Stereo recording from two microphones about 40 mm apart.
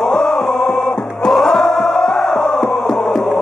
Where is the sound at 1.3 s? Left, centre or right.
Centre.